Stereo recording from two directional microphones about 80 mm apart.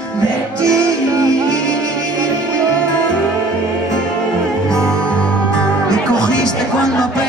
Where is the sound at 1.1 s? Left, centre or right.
Right.